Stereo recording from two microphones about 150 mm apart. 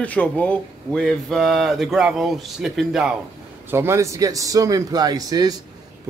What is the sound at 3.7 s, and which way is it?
Speech, 15° right (ahead or behind).